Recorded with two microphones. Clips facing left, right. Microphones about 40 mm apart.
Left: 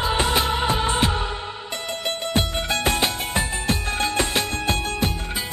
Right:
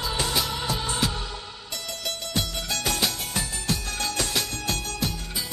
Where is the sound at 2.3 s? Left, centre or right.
Left.